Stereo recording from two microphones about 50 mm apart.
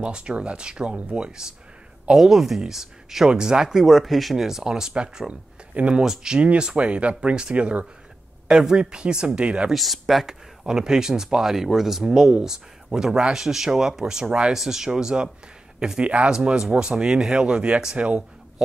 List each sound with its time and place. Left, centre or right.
0.0 s speech: centre
2.1 s speech: centre; by 9.7 s right
9.7 s speech: centre; by 18.2 s right